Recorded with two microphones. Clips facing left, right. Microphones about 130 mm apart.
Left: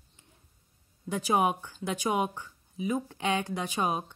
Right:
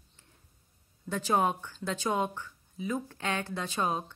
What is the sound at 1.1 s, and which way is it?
A woman's voice, 15° left (ahead or behind).